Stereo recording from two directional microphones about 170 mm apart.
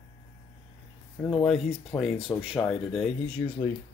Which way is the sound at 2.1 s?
30° left (ahead or behind).